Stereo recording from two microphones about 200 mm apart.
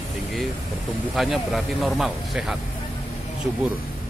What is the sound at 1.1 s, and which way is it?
Speech, centre (ahead or behind).